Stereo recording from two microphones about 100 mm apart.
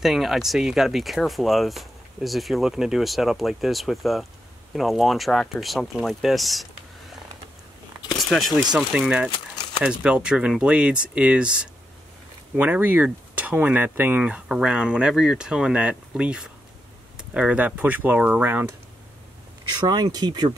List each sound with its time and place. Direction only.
0.0 s speech: centre (ahead or behind)
8.2 s speech: centre (ahead or behind); by 18.7 s 20° right (ahead or behind)
19.9 s speech: 45° right (ahead or behind)